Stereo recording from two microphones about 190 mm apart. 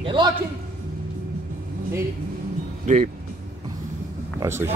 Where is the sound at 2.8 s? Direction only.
40° right (ahead or behind).